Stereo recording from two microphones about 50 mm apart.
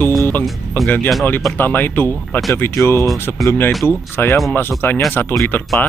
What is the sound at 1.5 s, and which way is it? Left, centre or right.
Speech, left.